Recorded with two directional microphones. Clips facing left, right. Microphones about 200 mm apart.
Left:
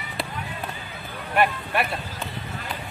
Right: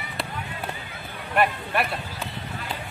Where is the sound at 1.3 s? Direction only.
Centre (ahead or behind).